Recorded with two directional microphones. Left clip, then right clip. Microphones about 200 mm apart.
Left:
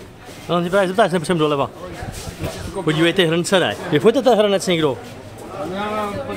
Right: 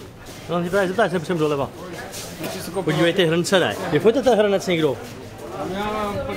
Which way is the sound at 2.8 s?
60° right (ahead or behind).